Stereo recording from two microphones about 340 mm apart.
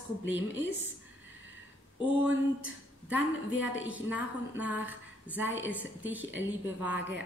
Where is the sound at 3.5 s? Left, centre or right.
Left.